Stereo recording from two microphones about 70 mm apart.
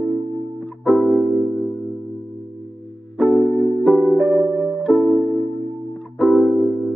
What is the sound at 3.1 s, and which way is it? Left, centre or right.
Music, centre.